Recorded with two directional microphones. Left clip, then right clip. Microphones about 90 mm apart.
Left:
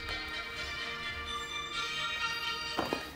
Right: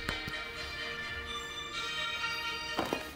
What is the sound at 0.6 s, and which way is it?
Music, 15° left (ahead or behind).